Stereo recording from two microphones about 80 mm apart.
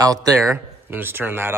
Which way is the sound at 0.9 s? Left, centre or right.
Right.